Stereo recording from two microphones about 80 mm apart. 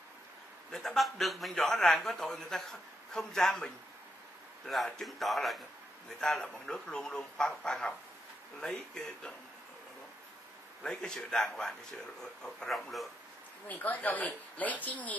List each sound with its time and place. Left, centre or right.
0.7 s a man's voice: centre
10.8 s a man's voice: centre
13.7 s speech: left